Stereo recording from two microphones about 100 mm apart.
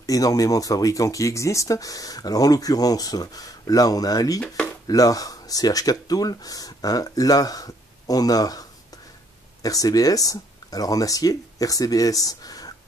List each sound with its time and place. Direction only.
0.0 s speech: 35° left (ahead or behind)